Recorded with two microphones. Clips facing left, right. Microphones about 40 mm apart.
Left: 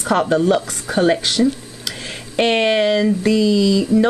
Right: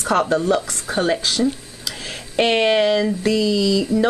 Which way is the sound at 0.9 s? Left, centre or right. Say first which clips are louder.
Left 3 dB; centre.